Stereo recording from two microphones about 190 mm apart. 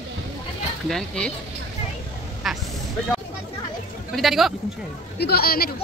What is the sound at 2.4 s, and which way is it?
Vehicle, centre (ahead or behind).